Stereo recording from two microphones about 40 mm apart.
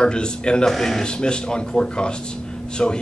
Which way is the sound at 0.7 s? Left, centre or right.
Centre.